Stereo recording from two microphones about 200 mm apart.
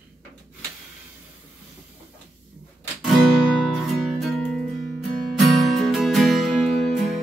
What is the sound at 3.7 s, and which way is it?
Music, centre (ahead or behind).